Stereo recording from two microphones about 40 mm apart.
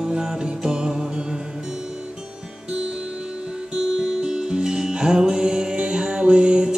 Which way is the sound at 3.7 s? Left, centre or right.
Centre.